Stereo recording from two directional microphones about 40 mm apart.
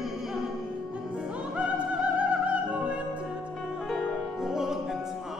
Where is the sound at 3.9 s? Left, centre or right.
Centre.